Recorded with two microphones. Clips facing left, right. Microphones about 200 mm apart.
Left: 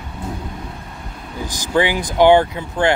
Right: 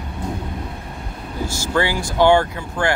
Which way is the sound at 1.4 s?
15° left (ahead or behind).